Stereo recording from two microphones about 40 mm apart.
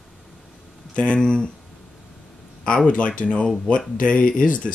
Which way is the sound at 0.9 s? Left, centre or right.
Left.